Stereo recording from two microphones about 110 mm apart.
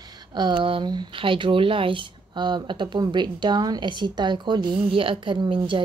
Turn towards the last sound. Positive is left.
turn(degrees=-50)  # may be behind; listen again after turning